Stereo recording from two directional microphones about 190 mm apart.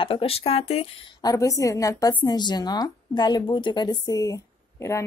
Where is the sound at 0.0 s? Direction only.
30° left (ahead or behind).